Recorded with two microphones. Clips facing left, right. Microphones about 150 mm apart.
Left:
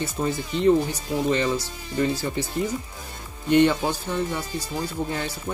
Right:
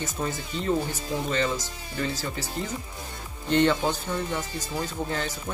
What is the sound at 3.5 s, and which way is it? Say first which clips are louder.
Speech: left 3 dB; 10° left (ahead or behind).